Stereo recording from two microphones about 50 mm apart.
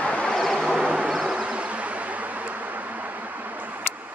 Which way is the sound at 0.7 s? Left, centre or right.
Right.